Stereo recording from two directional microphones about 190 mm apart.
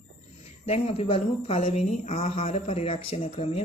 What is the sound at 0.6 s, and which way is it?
Speech, 30° left (ahead or behind).